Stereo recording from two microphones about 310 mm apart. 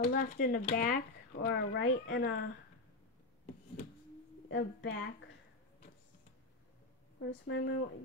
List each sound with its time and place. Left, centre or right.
0.0 s speech: left
4.5 s a woman's voice: left
7.2 s a woman's voice: left